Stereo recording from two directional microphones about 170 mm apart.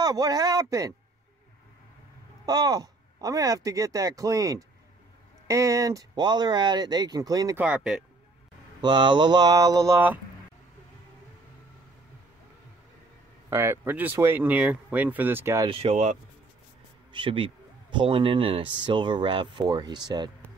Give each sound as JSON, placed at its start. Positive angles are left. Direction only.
{"t": 0.0, "sound": "speech", "side_deg": -20}
{"t": 2.4, "sound": "speech", "side_deg": -25}
{"t": 7.6, "sound": "speech", "side_deg": -5}
{"t": 8.8, "sound": "speech", "side_deg": -25}
{"t": 13.5, "sound": "speech", "side_deg": -15}
{"t": 15.7, "sound": "speech", "side_deg": -35}